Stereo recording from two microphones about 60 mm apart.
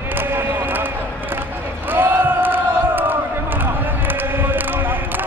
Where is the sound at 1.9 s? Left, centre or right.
Right.